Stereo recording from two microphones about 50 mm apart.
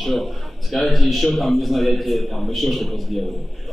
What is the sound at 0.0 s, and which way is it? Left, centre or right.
Speech, centre.